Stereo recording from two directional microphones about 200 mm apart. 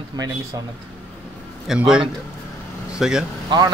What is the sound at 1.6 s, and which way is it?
Speech, 5° right (ahead or behind).